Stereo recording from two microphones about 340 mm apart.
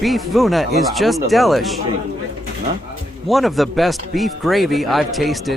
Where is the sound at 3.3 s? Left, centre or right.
Centre.